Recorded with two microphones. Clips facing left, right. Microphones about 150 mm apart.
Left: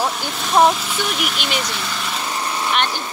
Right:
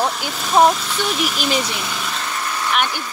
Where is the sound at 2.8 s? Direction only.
20° left (ahead or behind).